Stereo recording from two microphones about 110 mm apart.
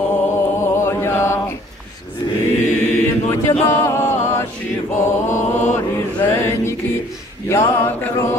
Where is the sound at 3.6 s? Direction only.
25° left (ahead or behind).